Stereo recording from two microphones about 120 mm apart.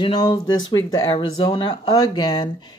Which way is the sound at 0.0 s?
40° left (ahead or behind).